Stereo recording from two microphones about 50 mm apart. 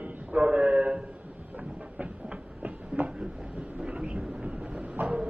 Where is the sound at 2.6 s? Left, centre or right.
Right.